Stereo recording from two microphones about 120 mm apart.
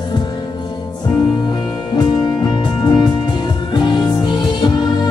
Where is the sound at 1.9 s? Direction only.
35° left (ahead or behind).